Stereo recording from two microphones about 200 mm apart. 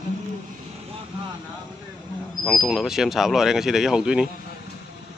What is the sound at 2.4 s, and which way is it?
Speech, centre (ahead or behind).